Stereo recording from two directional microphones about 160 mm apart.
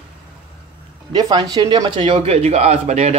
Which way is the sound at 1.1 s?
25° right (ahead or behind).